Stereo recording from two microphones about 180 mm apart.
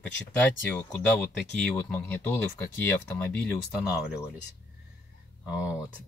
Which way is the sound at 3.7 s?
5° right (ahead or behind).